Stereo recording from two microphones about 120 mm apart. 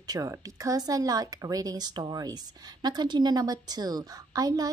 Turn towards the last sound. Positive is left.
turn(degrees=-30)  # may be behind; listen again after turning